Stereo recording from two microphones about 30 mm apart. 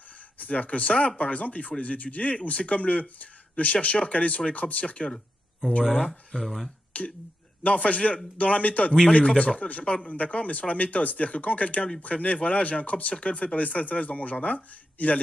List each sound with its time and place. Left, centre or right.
0.4 s speech: left
6.4 s speech: centre
6.9 s speech: left
9.3 s speech: left